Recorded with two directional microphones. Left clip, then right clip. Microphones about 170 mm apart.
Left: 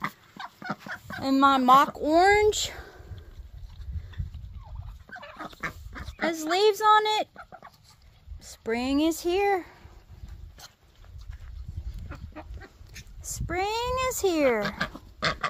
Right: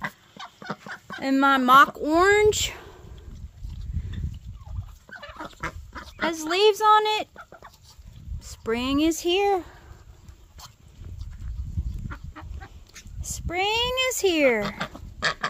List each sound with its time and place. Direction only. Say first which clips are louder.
0.0 s chicken: even; 20° right (ahead or behind)
1.2 s speech: even; 15° right (ahead or behind)
5.1 s fowl: right 1 dB; 30° right (ahead or behind)
6.2 s a woman's voice: right 2 dB; 10° right (ahead or behind)
7.3 s chicken: right 1 dB; 45° right (ahead or behind)
8.4 s speech: right 2 dB; 10° right (ahead or behind)
12.1 s fowl: even; 10° right (ahead or behind)
13.2 s speech: right 3 dB; 10° right (ahead or behind)
14.6 s dog: even; centre (ahead or behind)